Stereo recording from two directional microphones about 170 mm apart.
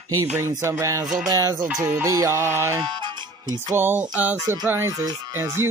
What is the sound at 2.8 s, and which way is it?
Music, 25° right (ahead or behind).